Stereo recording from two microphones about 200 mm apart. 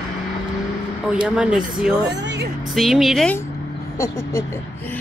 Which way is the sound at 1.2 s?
5° right (ahead or behind).